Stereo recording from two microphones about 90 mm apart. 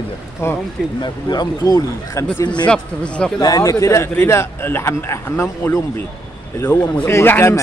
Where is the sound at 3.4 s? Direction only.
40° left (ahead or behind); by 5.4 s 25° left (ahead or behind).